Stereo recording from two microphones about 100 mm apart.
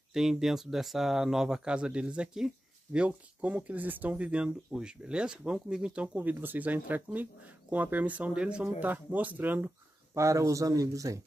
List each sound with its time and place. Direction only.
0.1 s speech: 5° right (ahead or behind)
10.1 s speech: 30° right (ahead or behind)